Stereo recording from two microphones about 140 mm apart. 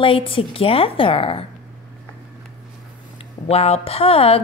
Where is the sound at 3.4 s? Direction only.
45° left (ahead or behind).